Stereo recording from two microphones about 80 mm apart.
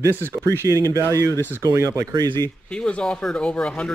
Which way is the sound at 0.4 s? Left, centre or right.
Right.